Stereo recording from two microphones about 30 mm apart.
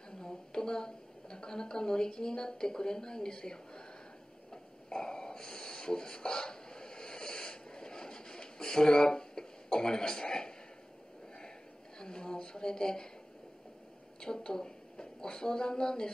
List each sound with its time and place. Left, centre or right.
0.1 s a woman's voice: left
4.5 s rub: left
12.0 s a woman's voice: left
14.2 s a woman's voice: left